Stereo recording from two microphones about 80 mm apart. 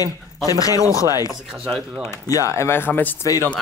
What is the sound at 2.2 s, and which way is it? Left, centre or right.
Speech, left.